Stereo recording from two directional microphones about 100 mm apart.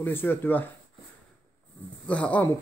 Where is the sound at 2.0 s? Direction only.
15° left (ahead or behind).